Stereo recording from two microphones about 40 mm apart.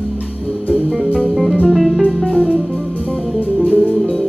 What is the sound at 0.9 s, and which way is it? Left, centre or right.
Music, right.